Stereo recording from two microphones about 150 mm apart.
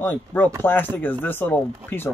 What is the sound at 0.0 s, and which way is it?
Speech, 10° left (ahead or behind).